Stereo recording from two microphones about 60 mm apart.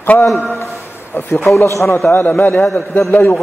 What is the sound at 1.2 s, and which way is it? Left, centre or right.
Speech, left.